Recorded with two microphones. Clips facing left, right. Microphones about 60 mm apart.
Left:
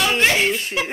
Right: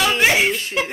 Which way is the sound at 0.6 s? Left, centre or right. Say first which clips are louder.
Right 1 dB; centre.